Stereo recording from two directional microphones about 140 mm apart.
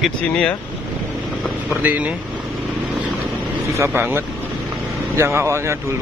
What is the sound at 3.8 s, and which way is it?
Speech, 15° right (ahead or behind).